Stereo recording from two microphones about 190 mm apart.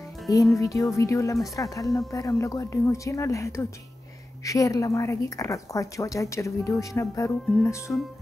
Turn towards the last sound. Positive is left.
turn(degrees=15)  # may be behind; listen again after turning